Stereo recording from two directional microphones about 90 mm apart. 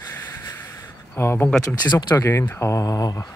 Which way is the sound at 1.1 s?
20° left (ahead or behind).